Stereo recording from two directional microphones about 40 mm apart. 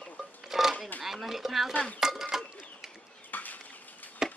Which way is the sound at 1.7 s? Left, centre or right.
Left.